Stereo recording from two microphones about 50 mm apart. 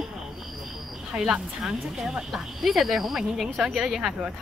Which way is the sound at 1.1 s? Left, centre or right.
Centre.